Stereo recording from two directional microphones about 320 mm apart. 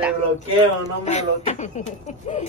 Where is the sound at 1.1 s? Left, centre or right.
Left.